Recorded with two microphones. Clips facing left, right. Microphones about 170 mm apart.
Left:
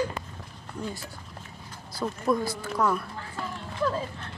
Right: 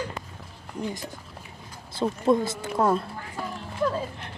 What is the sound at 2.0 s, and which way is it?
Speech, 25° right (ahead or behind).